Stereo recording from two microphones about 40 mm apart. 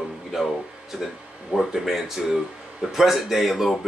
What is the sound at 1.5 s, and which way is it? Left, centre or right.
Speech, right.